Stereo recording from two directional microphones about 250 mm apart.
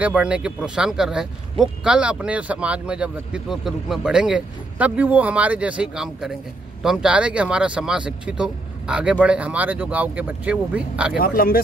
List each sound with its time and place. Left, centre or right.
0.0 s a man's voice: centre
11.1 s speech: left